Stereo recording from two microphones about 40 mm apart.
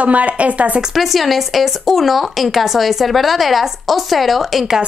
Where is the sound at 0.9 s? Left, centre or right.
Centre.